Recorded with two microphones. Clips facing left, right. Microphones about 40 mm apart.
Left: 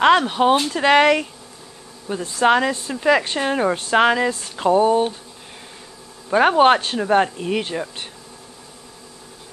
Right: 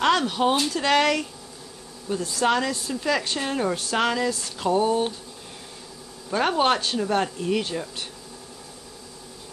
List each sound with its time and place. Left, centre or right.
0.0 s speech: left
6.3 s speech: left